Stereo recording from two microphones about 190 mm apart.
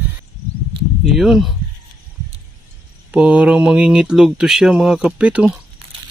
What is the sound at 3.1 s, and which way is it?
Speech, 5° right (ahead or behind).